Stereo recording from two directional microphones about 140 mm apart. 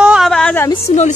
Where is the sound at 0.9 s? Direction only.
45° left (ahead or behind).